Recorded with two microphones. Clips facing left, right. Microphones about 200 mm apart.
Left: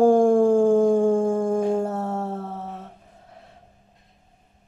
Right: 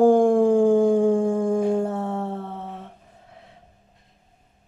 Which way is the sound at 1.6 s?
5° left (ahead or behind).